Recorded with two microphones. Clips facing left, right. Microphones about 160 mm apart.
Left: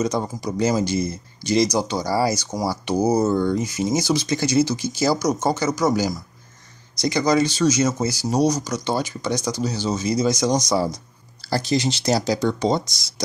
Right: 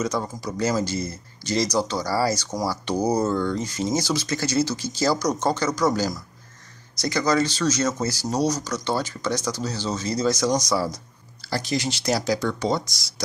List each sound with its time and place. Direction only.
0.0 s speech: 20° left (ahead or behind)